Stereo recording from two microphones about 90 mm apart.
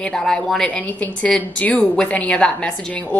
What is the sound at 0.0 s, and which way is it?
Speech, 5° left (ahead or behind).